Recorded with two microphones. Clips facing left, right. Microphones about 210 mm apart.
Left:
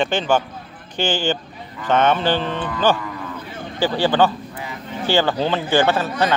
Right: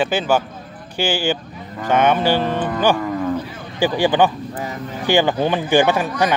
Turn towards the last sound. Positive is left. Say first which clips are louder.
# right 1 dB
turn(degrees=-15)  # may be behind; listen again after turning